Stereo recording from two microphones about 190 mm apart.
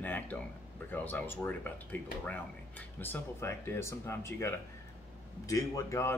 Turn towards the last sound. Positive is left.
turn(degrees=15)  # may be behind; listen again after turning